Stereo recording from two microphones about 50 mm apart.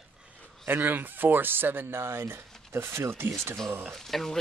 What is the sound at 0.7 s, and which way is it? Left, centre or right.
Speech, right.